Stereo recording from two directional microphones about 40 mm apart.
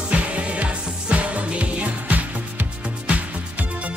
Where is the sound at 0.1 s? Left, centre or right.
Right.